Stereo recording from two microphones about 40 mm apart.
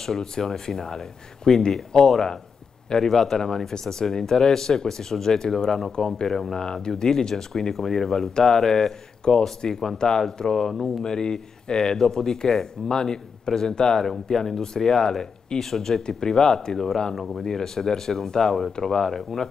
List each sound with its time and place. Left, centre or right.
0.0 s speech: centre
17.1 s speech: centre
17.5 s speech: centre